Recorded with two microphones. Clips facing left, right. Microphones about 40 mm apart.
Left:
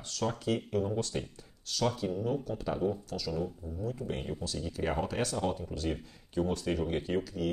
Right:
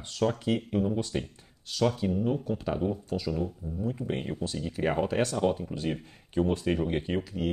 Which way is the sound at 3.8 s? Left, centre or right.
Right.